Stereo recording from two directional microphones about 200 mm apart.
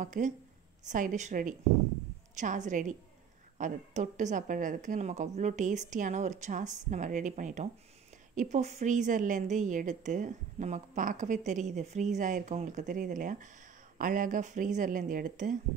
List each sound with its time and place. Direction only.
0.0 s a woman's voice: 40° right (ahead or behind)